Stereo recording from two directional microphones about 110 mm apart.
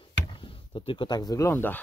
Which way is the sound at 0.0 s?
50° left (ahead or behind).